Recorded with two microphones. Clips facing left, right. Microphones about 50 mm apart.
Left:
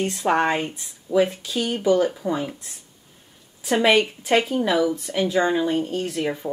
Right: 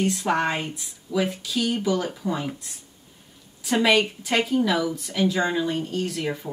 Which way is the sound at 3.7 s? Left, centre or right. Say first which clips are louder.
Left 2 dB; left.